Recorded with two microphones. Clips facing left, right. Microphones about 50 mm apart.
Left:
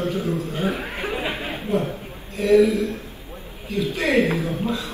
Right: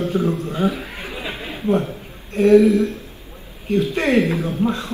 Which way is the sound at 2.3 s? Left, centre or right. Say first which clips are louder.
Right 5 dB; right.